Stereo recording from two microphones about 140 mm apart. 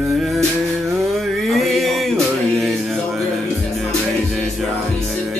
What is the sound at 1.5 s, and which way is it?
Mantra, centre (ahead or behind).